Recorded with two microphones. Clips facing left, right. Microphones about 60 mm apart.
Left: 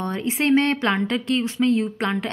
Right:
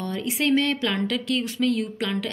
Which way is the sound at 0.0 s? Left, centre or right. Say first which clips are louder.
Left 2 dB; left.